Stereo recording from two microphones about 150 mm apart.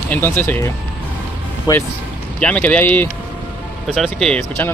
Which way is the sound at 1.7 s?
25° left (ahead or behind).